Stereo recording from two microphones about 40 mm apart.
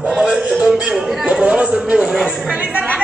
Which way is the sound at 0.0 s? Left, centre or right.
Centre.